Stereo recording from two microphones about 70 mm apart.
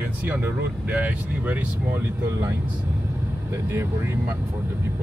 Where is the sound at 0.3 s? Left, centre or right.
Right.